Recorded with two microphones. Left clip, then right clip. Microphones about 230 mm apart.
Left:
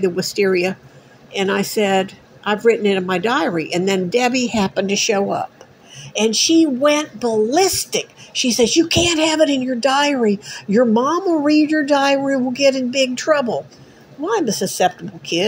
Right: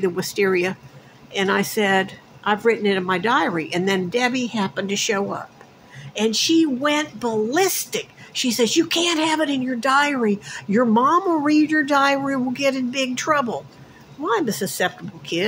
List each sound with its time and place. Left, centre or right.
0.0 s a woman's voice: centre